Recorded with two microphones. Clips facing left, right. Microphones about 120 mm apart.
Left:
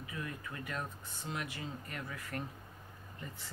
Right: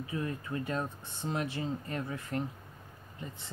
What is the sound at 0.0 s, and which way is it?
Speech, 30° right (ahead or behind).